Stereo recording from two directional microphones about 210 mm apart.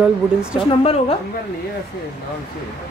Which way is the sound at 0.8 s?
25° left (ahead or behind).